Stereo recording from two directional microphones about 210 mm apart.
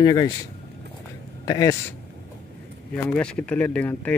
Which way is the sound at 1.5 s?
15° left (ahead or behind).